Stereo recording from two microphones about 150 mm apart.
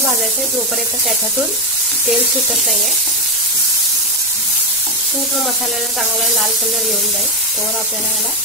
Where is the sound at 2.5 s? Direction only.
Centre (ahead or behind).